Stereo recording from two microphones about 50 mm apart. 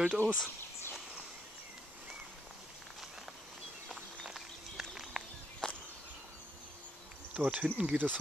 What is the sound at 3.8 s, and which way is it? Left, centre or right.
Walk, centre.